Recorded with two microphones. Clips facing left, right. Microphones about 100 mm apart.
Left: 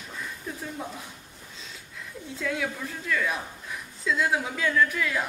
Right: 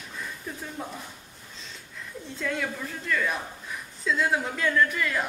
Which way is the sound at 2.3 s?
Centre (ahead or behind).